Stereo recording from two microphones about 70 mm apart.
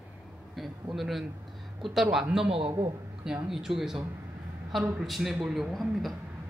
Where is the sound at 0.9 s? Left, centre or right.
Centre.